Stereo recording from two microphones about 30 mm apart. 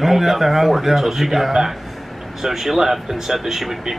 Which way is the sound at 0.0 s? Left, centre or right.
Centre.